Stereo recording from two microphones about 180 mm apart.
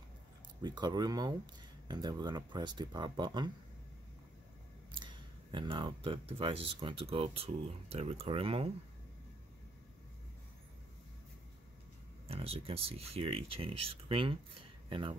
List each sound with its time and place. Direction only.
0.6 s speech: 25° right (ahead or behind)
4.9 s speech: 25° right (ahead or behind)
12.3 s speech: 30° right (ahead or behind)